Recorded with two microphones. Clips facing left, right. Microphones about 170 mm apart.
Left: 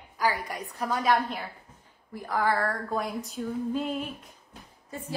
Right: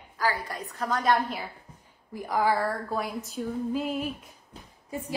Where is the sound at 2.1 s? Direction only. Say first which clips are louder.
Right 2 dB; 15° right (ahead or behind).